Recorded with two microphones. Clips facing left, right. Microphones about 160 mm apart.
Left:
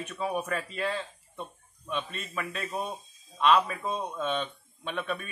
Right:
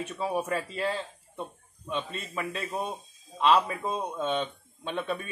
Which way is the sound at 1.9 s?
25° right (ahead or behind).